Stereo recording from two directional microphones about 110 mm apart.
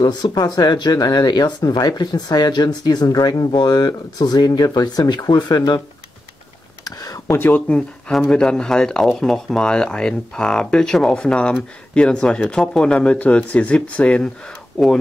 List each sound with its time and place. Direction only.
0.0 s speech: 40° left (ahead or behind)
6.8 s a sound: 35° left (ahead or behind)
7.3 s speech: 15° left (ahead or behind)